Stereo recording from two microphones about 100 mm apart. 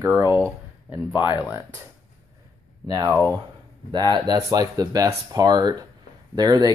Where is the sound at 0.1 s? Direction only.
25° right (ahead or behind).